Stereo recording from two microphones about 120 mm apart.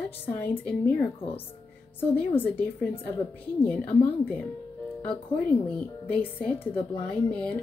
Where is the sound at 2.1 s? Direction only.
15° left (ahead or behind).